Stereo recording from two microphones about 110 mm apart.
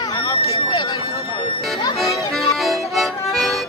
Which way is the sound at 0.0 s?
30° left (ahead or behind).